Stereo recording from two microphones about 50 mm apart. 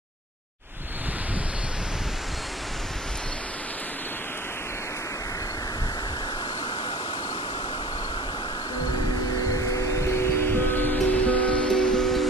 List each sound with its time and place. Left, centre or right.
10.0 s music: left; by 12.3 s centre